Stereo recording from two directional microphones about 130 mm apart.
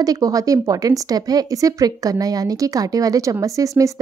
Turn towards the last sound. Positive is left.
turn(degrees=-25)  # may be behind; listen again after turning